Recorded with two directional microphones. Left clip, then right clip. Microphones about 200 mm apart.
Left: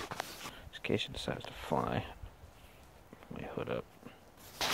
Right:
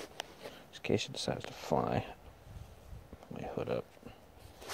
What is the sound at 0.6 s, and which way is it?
Speech, 10° right (ahead or behind).